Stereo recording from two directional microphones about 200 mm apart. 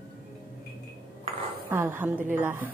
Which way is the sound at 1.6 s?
10° right (ahead or behind).